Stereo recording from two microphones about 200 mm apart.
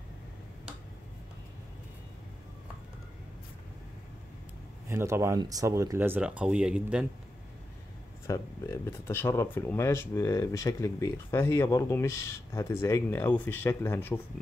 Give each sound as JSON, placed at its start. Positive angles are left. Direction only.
{"t": 4.8, "sound": "speech", "side_deg": -15}
{"t": 8.3, "sound": "speech", "side_deg": 15}